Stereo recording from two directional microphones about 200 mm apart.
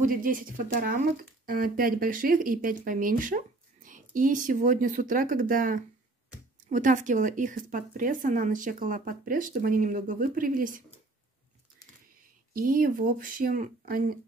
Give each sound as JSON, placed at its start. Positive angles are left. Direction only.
{"t": 0.0, "sound": "speech", "side_deg": -45}
{"t": 12.5, "sound": "speech", "side_deg": -45}